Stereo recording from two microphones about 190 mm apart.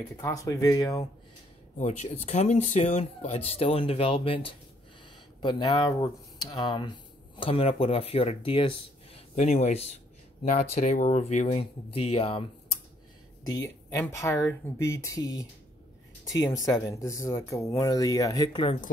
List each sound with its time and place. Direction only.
0.2 s speech: 20° left (ahead or behind)
1.8 s speech: 35° left (ahead or behind)
5.4 s speech: 25° left (ahead or behind)
13.5 s speech: 15° left (ahead or behind)
16.5 s speech: 15° left (ahead or behind)